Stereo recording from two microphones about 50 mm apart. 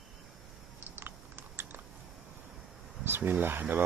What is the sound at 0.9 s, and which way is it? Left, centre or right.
Biting, right.